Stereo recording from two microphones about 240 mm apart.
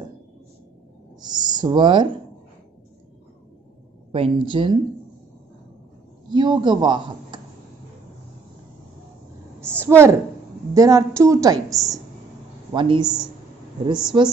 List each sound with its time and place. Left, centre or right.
1.2 s speech: centre
4.1 s speech: right
6.3 s a woman's voice: centre
9.6 s a woman's voice: centre